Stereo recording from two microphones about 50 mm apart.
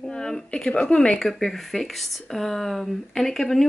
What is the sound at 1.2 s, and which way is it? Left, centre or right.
Speech, centre.